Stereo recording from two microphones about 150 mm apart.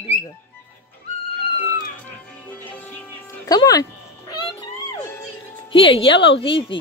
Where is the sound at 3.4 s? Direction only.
25° left (ahead or behind).